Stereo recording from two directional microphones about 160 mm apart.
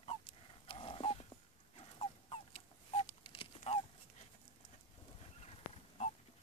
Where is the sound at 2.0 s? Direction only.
35° left (ahead or behind).